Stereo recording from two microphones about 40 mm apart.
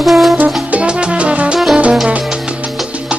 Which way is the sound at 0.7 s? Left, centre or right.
Right.